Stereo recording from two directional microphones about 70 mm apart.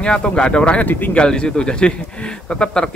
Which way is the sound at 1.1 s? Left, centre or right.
Centre.